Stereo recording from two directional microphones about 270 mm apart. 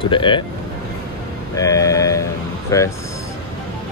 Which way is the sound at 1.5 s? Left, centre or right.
Centre.